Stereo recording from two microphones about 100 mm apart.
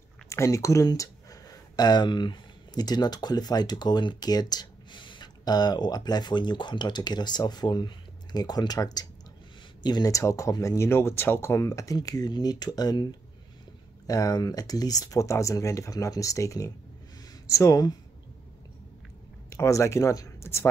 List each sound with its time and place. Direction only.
0.3 s speech: 30° left (ahead or behind)
10.1 s speech: 30° left (ahead or behind)
14.0 s speech: 35° left (ahead or behind)
19.5 s speech: 30° left (ahead or behind)